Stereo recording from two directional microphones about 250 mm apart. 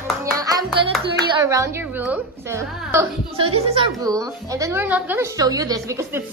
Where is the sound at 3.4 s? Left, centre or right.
Right.